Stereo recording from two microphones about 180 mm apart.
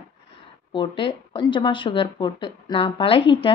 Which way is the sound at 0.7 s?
30° left (ahead or behind).